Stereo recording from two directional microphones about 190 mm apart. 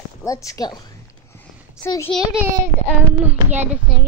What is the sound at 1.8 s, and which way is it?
Speech, 15° left (ahead or behind).